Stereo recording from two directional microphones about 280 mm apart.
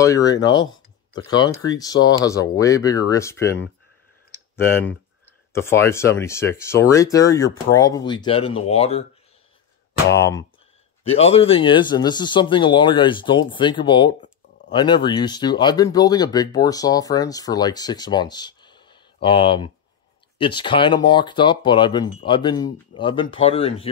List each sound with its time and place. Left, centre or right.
0.0 s speech: centre
5.2 s speech: centre
11.1 s speech: left